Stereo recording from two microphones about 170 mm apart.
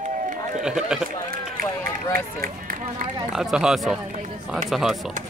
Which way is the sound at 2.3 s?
55° right (ahead or behind).